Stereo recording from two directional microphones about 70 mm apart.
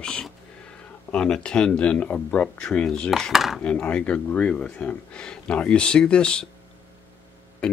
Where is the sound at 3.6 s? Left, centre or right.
Centre.